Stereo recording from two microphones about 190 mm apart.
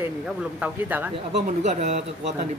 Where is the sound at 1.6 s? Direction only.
35° right (ahead or behind).